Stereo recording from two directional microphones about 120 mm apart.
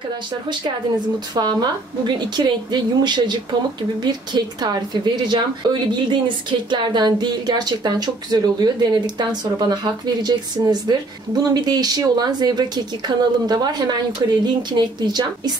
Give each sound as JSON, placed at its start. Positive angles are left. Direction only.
{"t": 1.3, "sound": "a woman's voice", "side_deg": -35}